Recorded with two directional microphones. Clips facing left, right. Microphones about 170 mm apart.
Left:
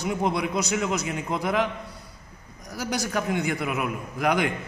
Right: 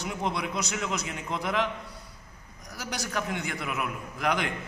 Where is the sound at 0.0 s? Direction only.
50° left (ahead or behind).